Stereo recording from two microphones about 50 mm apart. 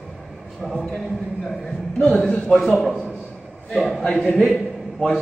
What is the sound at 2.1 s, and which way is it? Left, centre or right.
Speech, centre.